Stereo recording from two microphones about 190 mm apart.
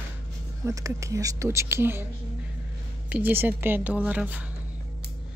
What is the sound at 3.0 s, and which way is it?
Speech, 10° right (ahead or behind).